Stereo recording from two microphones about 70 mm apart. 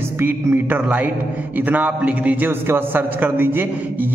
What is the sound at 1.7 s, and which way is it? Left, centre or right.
A man's voice, right.